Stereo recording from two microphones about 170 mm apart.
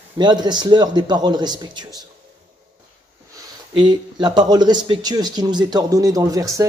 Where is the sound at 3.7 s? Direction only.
30° right (ahead or behind).